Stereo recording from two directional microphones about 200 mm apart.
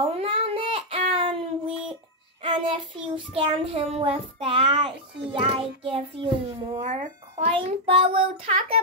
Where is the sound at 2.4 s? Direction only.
25° right (ahead or behind).